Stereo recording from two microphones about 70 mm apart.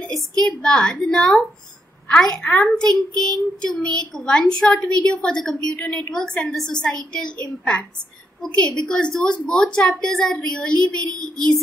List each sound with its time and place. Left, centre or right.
0.5 s a child's voice: centre
8.5 s a child's voice: centre